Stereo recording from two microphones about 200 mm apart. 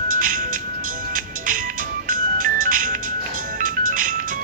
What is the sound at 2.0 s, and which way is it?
Music, 45° right (ahead or behind).